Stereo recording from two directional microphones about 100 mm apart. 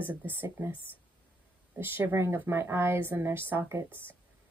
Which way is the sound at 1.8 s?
25° right (ahead or behind).